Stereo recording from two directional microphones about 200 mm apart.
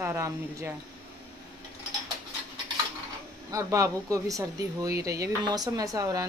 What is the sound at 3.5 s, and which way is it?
Speech, 15° right (ahead or behind).